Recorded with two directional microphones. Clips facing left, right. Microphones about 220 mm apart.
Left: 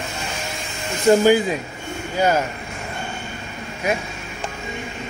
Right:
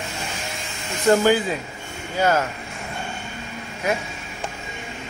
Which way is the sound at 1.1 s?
15° left (ahead or behind).